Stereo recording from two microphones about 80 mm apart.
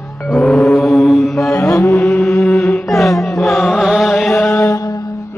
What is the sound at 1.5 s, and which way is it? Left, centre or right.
Mantra, left.